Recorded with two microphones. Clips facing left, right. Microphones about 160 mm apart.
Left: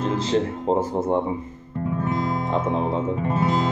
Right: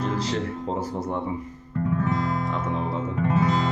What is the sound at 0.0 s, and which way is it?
Speech, 25° left (ahead or behind).